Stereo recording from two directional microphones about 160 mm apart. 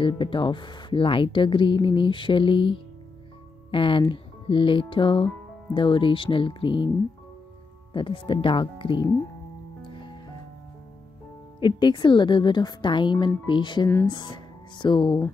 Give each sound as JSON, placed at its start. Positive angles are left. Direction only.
{"t": 0.0, "sound": "speech", "side_deg": 30}
{"t": 7.9, "sound": "speech", "side_deg": 30}
{"t": 11.6, "sound": "a woman's voice", "side_deg": 25}